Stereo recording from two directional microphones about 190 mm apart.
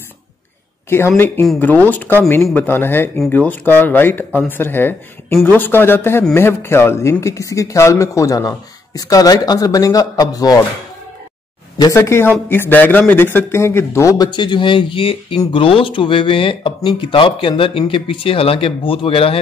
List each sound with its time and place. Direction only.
0.8 s speech: 10° left (ahead or behind)
11.8 s a man's voice: 15° left (ahead or behind)